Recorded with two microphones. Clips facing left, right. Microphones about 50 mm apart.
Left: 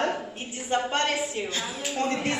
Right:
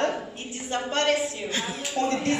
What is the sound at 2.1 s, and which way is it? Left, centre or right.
Speech, centre.